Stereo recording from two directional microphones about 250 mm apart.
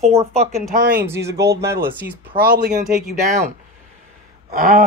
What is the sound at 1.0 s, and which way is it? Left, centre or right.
Speech, centre.